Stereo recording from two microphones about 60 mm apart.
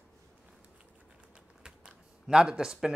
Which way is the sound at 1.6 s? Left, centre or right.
Centre.